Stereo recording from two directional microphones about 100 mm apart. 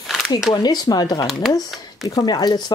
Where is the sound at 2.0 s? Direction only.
40° left (ahead or behind).